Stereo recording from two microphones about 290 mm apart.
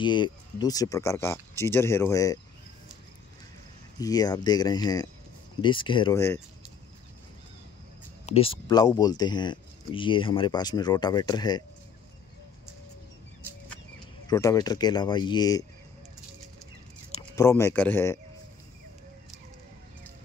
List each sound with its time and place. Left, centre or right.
0.0 s speech: centre
4.0 s speech: centre
8.3 s speech: centre
14.2 s speech: centre
17.1 s speech: centre